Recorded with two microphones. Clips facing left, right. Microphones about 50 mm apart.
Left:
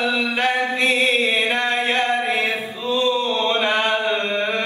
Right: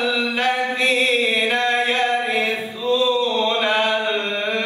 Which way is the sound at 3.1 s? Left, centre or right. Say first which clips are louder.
Right 1 dB; left.